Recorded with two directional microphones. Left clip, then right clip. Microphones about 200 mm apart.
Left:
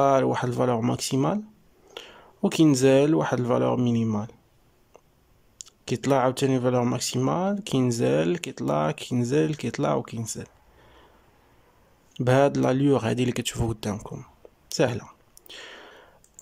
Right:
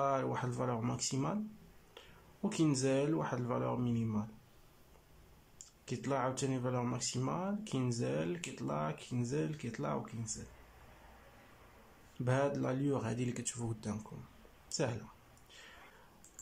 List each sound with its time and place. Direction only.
0.0 s speech: 50° left (ahead or behind)
5.7 s speech: 50° left (ahead or behind)
12.3 s speech: 50° left (ahead or behind)
14.7 s a sound: 50° left (ahead or behind)